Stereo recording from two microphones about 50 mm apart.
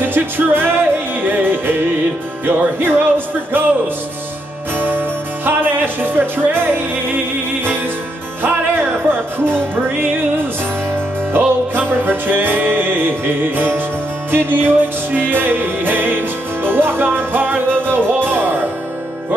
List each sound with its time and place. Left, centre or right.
0.0 s music: right
4.7 s music: right
11.3 s music: right